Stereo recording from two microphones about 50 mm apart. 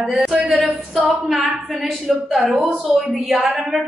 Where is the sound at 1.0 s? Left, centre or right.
Centre.